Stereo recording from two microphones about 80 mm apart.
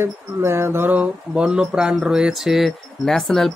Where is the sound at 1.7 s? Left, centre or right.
Centre.